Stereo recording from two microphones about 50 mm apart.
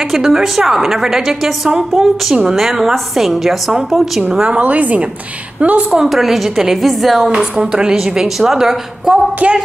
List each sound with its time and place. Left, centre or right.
0.1 s a woman's voice: centre
4.4 s a woman's voice: right
5.9 s a woman's voice: centre
7.3 s a woman's voice: centre
8.0 s a woman's voice: centre
9.1 s a woman's voice: right